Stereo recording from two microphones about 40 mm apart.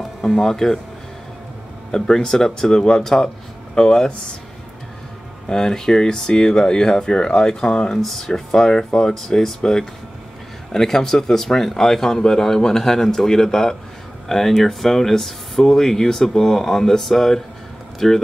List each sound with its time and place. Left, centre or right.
0.0 s speech: centre
1.9 s speech: centre
5.5 s speech: centre
8.0 s speech: centre